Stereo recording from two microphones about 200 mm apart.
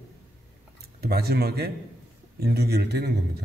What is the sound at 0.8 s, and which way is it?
A man's voice, 50° right (ahead or behind).